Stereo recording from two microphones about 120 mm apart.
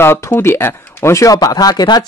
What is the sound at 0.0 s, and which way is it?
Speech, 20° left (ahead or behind).